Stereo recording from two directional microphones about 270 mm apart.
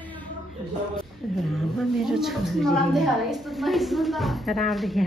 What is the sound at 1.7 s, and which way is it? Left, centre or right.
A woman's voice, centre.